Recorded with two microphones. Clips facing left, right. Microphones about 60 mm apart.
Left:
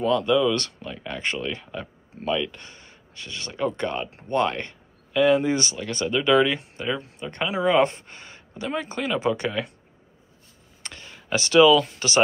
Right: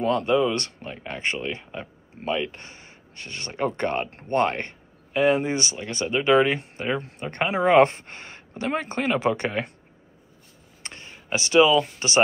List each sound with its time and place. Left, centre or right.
0.0 s speech: right
10.8 s a sound: right
11.8 s speech: right